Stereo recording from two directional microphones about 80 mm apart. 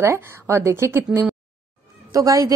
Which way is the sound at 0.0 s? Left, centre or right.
Right.